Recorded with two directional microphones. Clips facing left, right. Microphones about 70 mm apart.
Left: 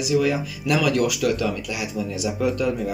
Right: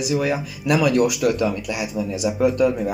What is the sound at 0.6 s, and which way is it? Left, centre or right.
Speech, centre.